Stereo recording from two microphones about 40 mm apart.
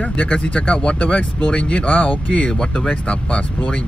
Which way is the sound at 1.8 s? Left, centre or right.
Left.